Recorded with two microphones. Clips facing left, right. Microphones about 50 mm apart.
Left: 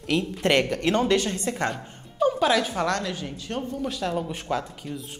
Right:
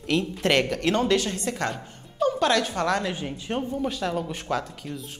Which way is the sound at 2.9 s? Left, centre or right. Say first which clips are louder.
Right 2 dB; centre.